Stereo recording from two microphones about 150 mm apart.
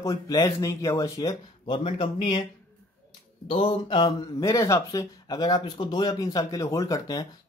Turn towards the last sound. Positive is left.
turn(degrees=25)  # may be behind; listen again after turning